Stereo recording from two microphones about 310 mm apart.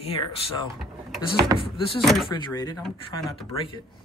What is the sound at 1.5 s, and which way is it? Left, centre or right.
Speech, centre.